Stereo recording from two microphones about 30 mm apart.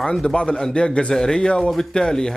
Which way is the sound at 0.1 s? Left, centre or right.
Left.